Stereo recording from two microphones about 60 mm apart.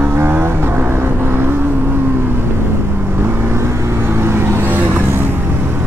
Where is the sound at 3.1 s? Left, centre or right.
Right.